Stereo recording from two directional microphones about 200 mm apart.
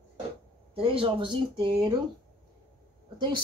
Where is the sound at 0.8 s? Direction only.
25° right (ahead or behind).